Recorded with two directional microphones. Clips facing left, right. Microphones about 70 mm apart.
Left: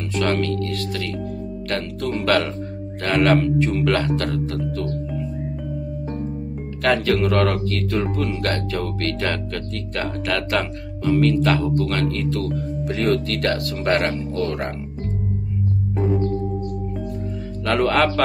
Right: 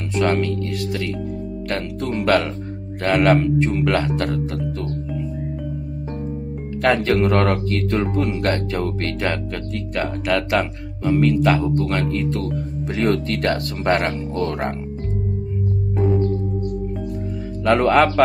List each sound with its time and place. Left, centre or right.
0.1 s speech: centre
2.1 s speech: centre
6.8 s speech: right
17.6 s speech: right